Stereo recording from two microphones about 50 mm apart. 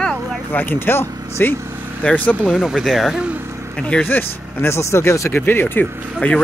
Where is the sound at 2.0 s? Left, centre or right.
Left.